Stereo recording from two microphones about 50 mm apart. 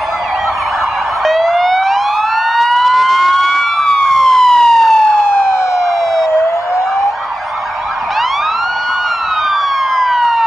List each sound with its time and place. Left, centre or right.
1.2 s police car: centre
2.5 s emergency vehicle: centre
9.9 s police car: centre